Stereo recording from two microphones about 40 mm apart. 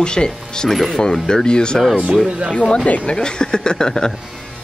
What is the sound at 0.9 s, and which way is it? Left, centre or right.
Speech, centre.